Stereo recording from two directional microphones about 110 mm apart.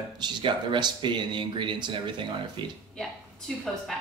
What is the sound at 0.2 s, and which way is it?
Speech, 45° right (ahead or behind).